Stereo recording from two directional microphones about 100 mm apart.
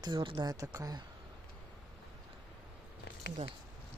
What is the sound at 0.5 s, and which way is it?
Speech, 35° right (ahead or behind).